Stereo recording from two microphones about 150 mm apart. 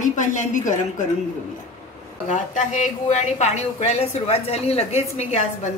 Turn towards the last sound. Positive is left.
turn(degrees=50)  # may be behind; listen again after turning